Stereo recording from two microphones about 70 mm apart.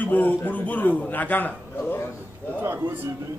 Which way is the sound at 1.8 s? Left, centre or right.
Left.